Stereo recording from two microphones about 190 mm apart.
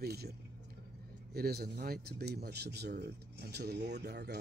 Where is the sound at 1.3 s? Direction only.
55° right (ahead or behind).